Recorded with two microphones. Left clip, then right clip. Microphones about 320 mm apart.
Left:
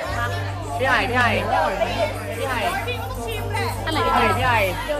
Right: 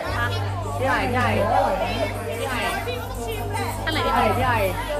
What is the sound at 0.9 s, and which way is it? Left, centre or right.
Speech, left.